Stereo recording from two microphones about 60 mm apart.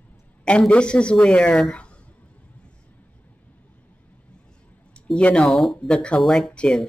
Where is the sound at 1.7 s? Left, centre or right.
Centre.